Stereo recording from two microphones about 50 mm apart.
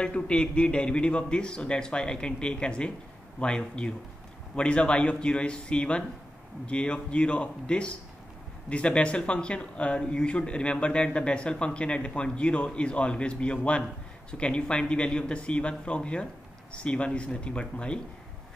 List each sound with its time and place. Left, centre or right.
0.0 s speech: left